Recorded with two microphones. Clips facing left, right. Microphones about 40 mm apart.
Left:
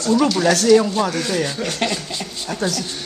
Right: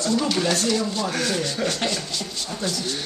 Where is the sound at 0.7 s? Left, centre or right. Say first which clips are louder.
Left 10 dB; left.